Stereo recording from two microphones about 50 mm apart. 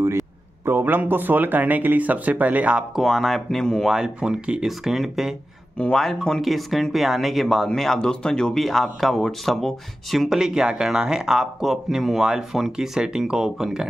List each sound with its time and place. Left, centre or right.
0.7 s speech: right
3.0 s speech: centre
3.9 s speech: centre
5.9 s speech: centre
8.5 s speech: centre
10.3 s speech: centre